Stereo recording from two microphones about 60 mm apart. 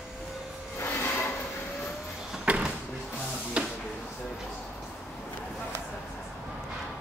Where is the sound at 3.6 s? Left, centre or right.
Centre.